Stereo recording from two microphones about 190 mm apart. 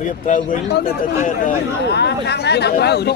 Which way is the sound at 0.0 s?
40° left (ahead or behind).